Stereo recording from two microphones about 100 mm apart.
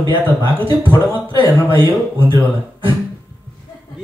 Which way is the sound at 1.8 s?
60° right (ahead or behind).